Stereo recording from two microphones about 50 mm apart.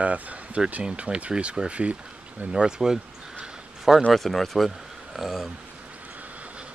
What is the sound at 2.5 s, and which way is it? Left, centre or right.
Speech, centre.